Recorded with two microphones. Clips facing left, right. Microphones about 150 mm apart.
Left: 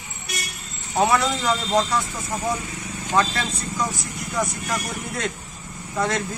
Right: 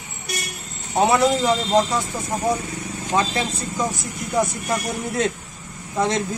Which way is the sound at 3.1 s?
25° right (ahead or behind).